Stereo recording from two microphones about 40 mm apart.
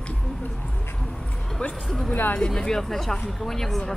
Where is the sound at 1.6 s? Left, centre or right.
Left.